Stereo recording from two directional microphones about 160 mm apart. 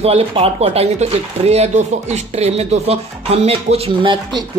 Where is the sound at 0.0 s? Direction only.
40° right (ahead or behind).